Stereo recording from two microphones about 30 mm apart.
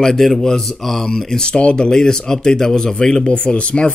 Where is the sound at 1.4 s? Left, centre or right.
Left.